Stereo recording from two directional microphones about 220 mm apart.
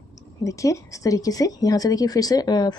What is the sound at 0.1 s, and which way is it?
Speech, 15° left (ahead or behind).